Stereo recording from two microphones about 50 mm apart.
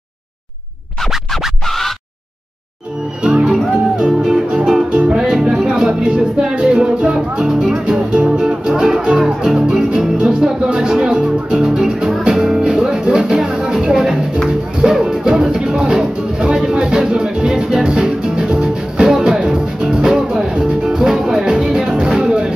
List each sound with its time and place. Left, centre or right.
3.2 s music: centre